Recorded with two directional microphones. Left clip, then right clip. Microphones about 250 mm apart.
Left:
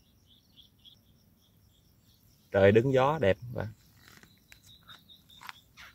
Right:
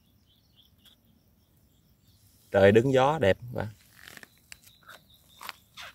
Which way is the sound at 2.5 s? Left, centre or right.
Centre.